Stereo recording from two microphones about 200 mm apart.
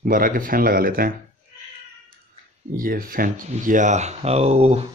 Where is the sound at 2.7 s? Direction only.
45° right (ahead or behind).